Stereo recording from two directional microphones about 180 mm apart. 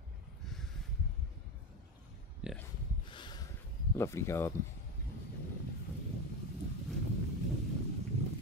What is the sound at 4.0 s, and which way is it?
Speech, 15° left (ahead or behind).